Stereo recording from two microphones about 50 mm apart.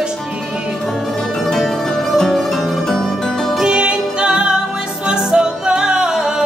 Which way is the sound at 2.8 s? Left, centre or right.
Centre.